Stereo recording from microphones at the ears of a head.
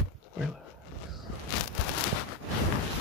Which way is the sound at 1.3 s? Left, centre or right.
Left.